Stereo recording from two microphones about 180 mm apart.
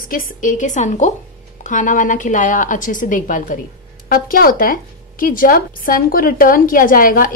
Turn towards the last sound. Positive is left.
turn(degrees=50)  # may be behind; listen again after turning